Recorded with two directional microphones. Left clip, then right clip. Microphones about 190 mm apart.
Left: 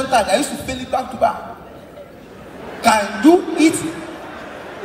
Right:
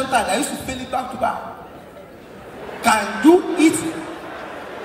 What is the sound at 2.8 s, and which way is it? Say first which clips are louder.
Speech: left 2 dB; 15° left (ahead or behind).